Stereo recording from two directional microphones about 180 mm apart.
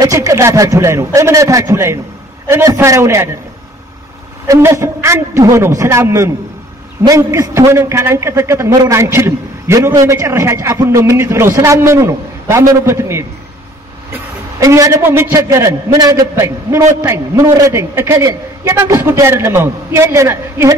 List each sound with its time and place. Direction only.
0.0 s a man's voice: 20° right (ahead or behind)
4.5 s a man's voice: 15° right (ahead or behind)
14.6 s a man's voice: 15° right (ahead or behind)